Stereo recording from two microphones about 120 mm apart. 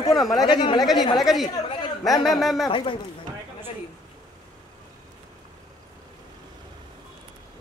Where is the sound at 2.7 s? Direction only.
45° left (ahead or behind).